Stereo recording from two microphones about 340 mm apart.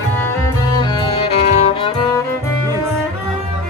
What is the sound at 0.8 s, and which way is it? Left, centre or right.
Music, centre.